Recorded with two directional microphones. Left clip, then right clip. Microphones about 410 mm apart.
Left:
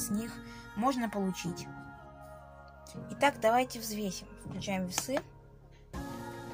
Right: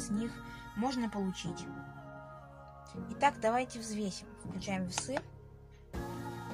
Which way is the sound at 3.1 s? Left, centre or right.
Right.